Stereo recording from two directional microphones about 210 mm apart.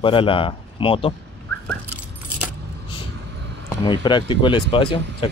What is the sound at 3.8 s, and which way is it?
Speech, 20° left (ahead or behind).